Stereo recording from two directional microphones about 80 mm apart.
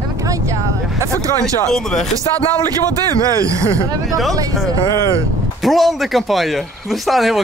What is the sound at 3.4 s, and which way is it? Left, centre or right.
Speech, right.